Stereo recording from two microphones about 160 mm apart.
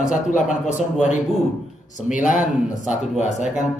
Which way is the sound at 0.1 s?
55° left (ahead or behind).